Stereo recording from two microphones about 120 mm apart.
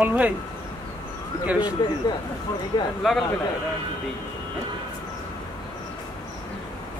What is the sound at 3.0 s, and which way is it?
Speech, centre (ahead or behind).